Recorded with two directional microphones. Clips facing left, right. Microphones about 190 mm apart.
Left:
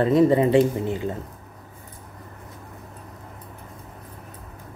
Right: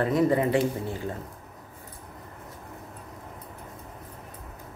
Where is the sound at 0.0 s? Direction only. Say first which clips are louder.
Left 5 dB; 25° left (ahead or behind).